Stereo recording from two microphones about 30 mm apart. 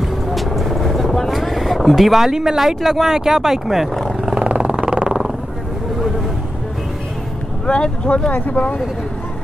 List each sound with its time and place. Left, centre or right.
0.0 s vehicle: centre
1.3 s speech: centre
4.5 s vehicle: right
7.6 s boat: left
8.3 s speech: left